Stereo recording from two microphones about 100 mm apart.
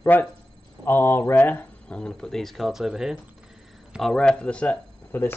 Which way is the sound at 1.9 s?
10° left (ahead or behind).